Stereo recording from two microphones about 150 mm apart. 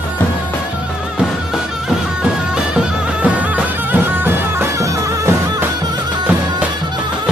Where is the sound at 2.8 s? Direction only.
10° right (ahead or behind).